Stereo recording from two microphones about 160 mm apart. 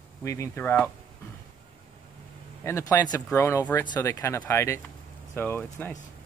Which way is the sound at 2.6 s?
15° left (ahead or behind).